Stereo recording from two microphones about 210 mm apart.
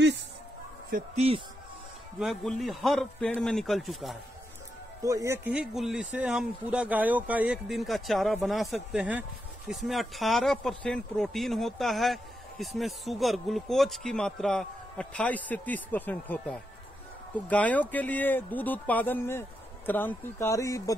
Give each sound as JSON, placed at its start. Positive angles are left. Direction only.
{"t": 0.8, "sound": "speech", "side_deg": -35}
{"t": 2.1, "sound": "a man's voice", "side_deg": 0}
{"t": 5.0, "sound": "a man's voice", "side_deg": -15}